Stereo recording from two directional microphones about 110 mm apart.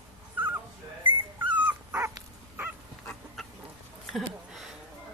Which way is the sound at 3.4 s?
Centre (ahead or behind).